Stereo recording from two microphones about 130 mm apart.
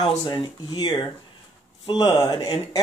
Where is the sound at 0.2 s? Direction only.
30° left (ahead or behind).